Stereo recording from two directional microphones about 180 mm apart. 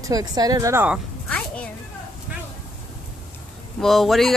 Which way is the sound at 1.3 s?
10° left (ahead or behind).